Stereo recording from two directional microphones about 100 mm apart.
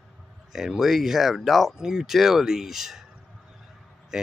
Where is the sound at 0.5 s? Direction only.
5° right (ahead or behind).